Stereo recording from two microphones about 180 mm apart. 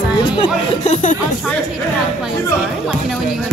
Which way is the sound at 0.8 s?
40° left (ahead or behind).